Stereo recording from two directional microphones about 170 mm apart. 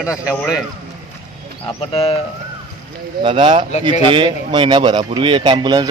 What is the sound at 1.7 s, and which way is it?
Speech, 35° left (ahead or behind).